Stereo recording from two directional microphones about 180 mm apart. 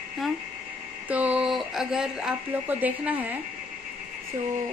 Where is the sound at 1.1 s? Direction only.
10° right (ahead or behind).